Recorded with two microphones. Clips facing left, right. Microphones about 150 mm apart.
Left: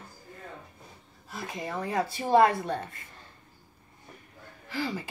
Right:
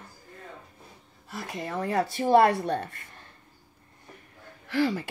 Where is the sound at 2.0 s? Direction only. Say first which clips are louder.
Right 2 dB; 75° right (ahead or behind).